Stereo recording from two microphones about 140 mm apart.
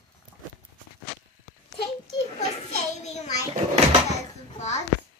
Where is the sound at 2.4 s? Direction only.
50° left (ahead or behind).